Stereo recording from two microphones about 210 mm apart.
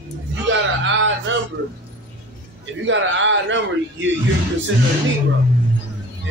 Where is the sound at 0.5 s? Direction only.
65° right (ahead or behind).